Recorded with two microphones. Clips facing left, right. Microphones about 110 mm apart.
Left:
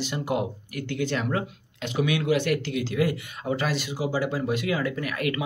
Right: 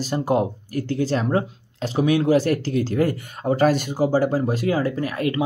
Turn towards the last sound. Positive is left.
turn(degrees=-30)  # may be behind; listen again after turning